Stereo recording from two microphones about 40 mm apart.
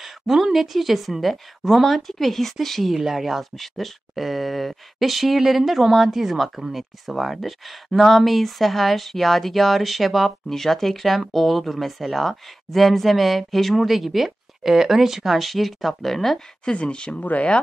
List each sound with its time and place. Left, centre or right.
0.0 s speech: centre
16.7 s speech: left
17.2 s speech: left